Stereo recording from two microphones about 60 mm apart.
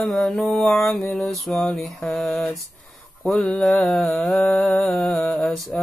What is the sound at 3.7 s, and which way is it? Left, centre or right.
Mantra, centre.